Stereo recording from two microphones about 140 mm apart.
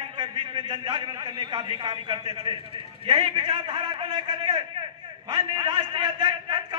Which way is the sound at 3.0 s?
35° right (ahead or behind).